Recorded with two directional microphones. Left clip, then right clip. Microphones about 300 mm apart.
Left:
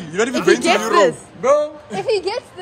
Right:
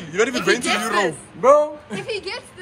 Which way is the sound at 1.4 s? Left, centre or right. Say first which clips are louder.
Right 2 dB; centre.